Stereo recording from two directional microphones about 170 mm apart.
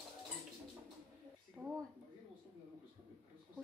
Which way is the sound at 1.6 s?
10° right (ahead or behind).